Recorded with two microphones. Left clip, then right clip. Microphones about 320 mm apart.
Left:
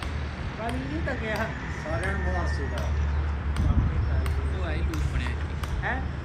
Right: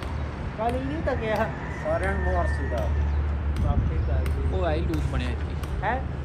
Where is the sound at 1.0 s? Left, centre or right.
Centre.